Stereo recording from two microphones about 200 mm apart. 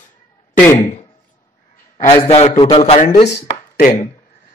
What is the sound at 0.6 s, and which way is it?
Speech, 15° left (ahead or behind).